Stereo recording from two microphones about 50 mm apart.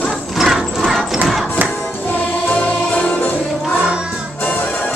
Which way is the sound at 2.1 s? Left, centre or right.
Left.